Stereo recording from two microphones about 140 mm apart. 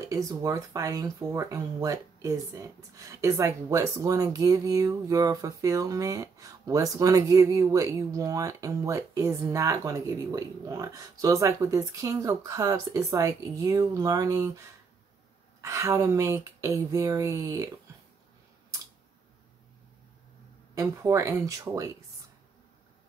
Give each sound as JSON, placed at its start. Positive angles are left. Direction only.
{"t": 0.1, "sound": "speech", "side_deg": -25}
{"t": 15.6, "sound": "speech", "side_deg": -20}
{"t": 20.7, "sound": "speech", "side_deg": -20}